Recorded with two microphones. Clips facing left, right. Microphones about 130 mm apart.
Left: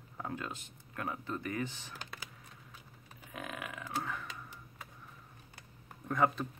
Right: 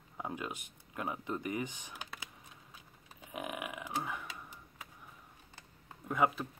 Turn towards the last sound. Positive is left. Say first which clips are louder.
# even
turn(degrees=-10)  # may be behind; listen again after turning